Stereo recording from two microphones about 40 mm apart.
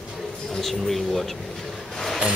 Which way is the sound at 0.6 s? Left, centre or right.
Centre.